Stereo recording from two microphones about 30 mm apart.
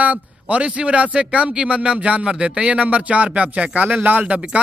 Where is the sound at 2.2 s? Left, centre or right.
Right.